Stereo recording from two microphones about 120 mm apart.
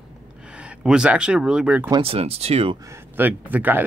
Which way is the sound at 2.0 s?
55° right (ahead or behind).